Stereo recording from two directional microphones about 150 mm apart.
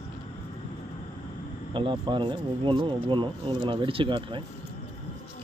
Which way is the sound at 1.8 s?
35° right (ahead or behind).